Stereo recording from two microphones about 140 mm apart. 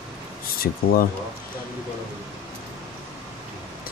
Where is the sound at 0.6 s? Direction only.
90° left.